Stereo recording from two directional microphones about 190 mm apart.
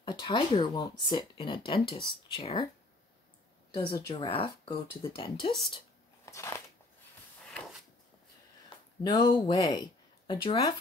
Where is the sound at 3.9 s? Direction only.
20° left (ahead or behind).